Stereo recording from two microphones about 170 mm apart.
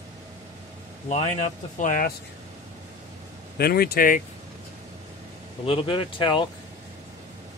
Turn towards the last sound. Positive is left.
turn(degrees=30)  # may be behind; listen again after turning